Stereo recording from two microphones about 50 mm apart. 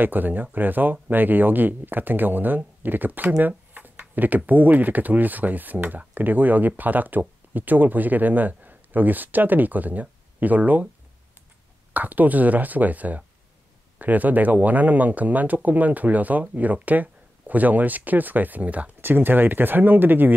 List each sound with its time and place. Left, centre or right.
0.0 s speech: right
3.9 s a sound: right
4.5 s speech: right
11.9 s speech: right
18.9 s speech: right